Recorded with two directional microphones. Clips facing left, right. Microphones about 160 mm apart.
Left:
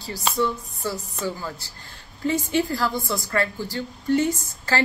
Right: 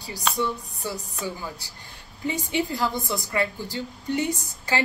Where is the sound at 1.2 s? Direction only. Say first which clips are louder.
Left 4 dB; 15° right (ahead or behind).